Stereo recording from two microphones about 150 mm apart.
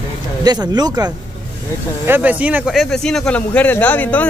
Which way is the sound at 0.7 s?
25° right (ahead or behind).